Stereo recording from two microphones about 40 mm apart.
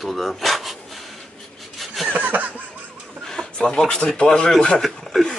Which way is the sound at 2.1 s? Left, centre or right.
Right.